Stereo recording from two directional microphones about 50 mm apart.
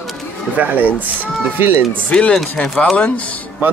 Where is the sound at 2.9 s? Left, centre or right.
Left.